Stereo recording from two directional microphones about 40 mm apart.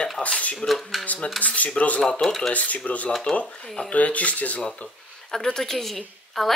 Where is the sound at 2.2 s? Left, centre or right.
Centre.